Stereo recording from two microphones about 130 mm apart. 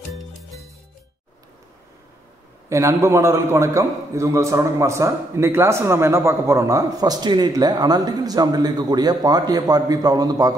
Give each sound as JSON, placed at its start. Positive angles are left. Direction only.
{"t": 0.1, "sound": "music", "side_deg": 0}
{"t": 2.7, "sound": "a man's voice", "side_deg": -20}